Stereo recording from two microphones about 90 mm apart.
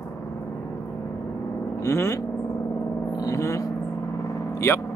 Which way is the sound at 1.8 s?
35° left (ahead or behind).